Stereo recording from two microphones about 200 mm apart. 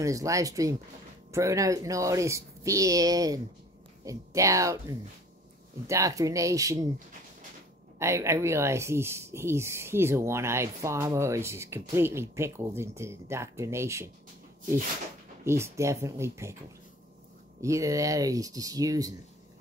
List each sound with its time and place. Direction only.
0.0 s speech: 15° right (ahead or behind)
8.0 s speech: 15° right (ahead or behind)
15.4 s speech: 15° right (ahead or behind)
17.6 s speech: 15° right (ahead or behind)